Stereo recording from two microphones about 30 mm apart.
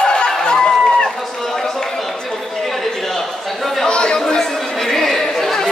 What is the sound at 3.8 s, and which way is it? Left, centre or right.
Chatter, left.